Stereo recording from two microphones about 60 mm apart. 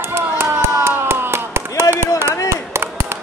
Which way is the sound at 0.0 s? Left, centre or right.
Right.